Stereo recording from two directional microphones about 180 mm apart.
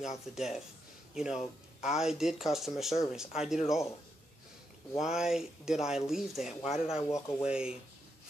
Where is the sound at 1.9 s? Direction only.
Centre (ahead or behind).